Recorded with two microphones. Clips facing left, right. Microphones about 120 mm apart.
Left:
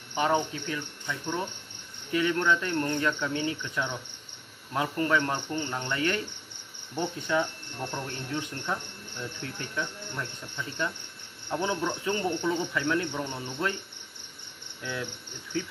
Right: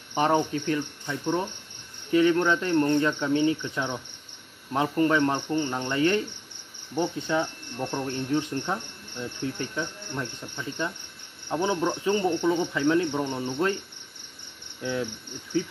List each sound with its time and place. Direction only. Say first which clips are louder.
0.1 s speech: right 3 dB; 35° right (ahead or behind)
2.0 s cricket: right 5 dB; 30° right (ahead or behind)
12.7 s cricket: right 5 dB; 25° right (ahead or behind)
14.8 s cricket: right 6 dB; 25° right (ahead or behind)